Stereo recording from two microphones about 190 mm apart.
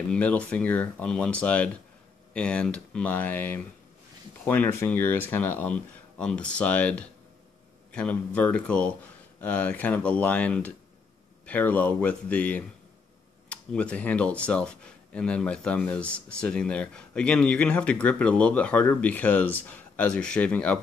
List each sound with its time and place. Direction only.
0.1 s speech: 5° left (ahead or behind)